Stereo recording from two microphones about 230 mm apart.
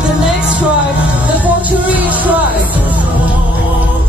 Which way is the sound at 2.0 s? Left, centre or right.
Centre.